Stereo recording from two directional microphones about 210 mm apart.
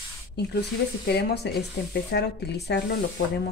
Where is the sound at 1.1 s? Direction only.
50° left (ahead or behind).